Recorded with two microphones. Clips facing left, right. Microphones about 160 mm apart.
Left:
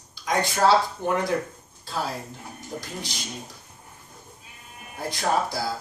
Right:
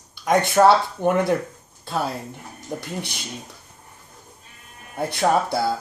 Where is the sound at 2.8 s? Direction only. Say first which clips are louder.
Right 4 dB; 60° right (ahead or behind).